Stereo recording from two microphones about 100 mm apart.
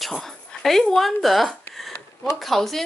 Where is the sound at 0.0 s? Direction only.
5° left (ahead or behind).